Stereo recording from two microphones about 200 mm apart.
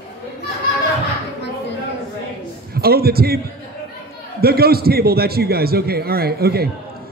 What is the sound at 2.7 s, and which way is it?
Speech, 50° right (ahead or behind).